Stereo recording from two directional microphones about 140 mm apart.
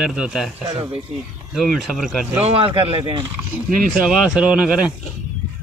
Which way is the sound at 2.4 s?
45° right (ahead or behind).